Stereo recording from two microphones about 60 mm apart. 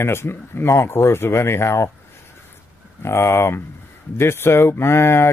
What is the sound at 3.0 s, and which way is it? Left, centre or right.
Speech, left.